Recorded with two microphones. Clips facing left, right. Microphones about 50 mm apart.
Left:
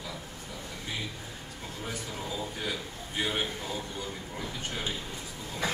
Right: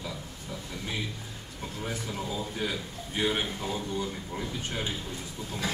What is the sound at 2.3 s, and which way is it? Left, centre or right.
A man's voice, centre.